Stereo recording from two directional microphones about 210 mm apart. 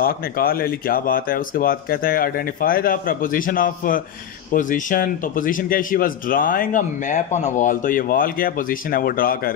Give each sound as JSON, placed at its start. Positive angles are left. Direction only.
{"t": 0.0, "sound": "speech", "side_deg": 45}